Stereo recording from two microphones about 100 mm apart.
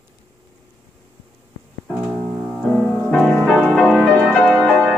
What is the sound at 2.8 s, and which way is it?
Music, 10° left (ahead or behind).